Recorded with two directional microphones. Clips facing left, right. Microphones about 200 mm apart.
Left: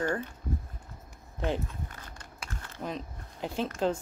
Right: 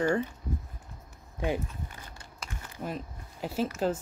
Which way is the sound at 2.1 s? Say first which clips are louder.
Even; 10° right (ahead or behind).